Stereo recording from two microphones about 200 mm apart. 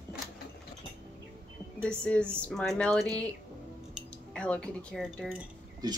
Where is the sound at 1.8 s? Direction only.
5° left (ahead or behind).